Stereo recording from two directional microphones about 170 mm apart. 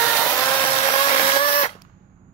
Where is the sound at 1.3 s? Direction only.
35° left (ahead or behind).